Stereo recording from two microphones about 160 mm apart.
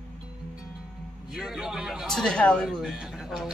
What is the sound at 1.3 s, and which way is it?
A man's voice, centre (ahead or behind).